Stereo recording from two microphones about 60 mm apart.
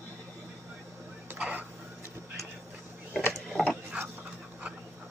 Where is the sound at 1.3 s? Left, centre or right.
Right.